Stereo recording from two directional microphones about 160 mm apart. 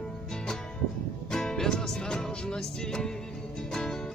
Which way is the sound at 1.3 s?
5° left (ahead or behind).